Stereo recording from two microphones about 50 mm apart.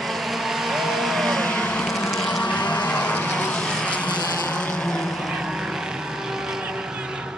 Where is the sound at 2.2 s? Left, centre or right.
Centre.